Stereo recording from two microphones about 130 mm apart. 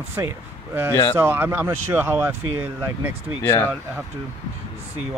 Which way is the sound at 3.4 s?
20° left (ahead or behind).